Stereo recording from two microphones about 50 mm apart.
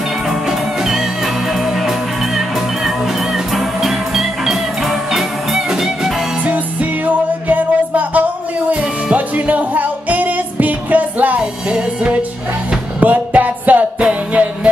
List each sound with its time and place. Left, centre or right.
0.3 s music: centre
6.4 s music: right